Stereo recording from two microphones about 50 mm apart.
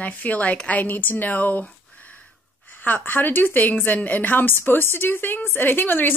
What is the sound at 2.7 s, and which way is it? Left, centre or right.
A woman's voice, left.